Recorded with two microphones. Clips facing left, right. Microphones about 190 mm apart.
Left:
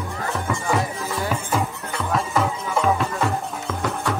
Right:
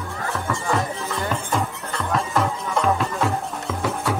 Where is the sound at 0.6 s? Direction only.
Centre (ahead or behind).